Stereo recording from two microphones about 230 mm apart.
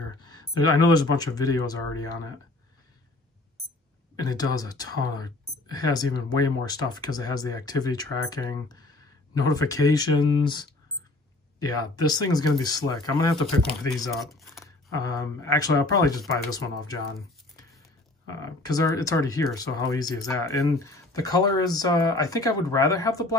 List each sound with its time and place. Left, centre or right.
0.2 s speech: centre
4.2 s speech: centre
11.9 s speech: centre
18.6 s speech: centre